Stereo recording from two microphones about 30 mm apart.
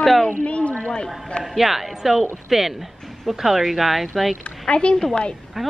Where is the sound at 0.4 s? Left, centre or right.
Left.